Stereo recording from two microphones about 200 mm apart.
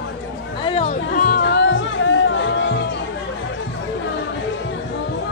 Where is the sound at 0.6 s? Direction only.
30° left (ahead or behind); by 2.7 s 65° left (ahead or behind).